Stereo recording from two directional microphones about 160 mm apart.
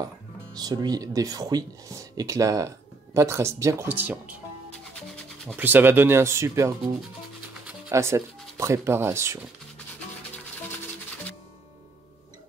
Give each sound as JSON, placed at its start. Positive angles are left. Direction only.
{"t": 0.0, "sound": "speech", "side_deg": -25}
{"t": 5.6, "sound": "speech", "side_deg": -10}
{"t": 7.9, "sound": "speech", "side_deg": -15}